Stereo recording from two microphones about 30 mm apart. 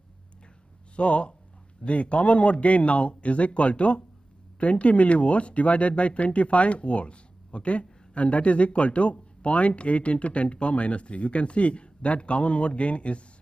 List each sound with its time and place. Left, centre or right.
0.9 s speech: left